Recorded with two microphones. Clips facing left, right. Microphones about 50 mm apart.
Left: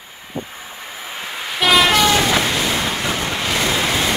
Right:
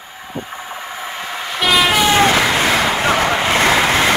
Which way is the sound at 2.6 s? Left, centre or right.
Right.